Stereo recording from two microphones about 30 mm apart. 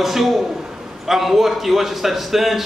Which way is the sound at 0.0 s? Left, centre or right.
Centre.